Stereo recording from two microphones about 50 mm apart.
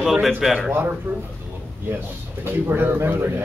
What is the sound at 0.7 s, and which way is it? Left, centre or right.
Speech, right.